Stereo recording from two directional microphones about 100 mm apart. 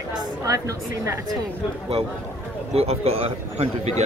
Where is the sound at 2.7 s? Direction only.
90° right.